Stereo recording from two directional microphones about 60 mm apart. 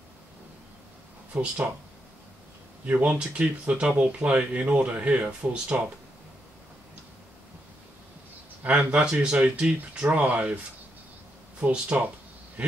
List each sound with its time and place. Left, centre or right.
1.3 s speech: centre
2.8 s speech: right
8.6 s speech: right
11.9 s speech: right